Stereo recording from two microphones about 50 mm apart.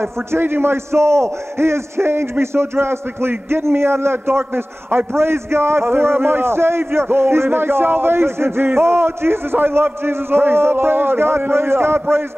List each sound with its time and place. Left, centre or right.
0.0 s a man's voice: right